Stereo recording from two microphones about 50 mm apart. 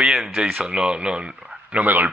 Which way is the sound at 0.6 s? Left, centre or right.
Centre.